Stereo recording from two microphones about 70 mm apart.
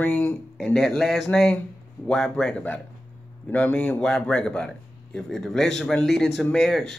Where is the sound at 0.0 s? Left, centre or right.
Left.